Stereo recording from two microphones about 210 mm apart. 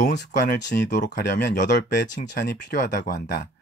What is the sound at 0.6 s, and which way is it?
Speech, 55° left (ahead or behind).